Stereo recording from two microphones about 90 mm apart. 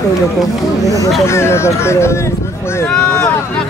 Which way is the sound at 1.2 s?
30° left (ahead or behind).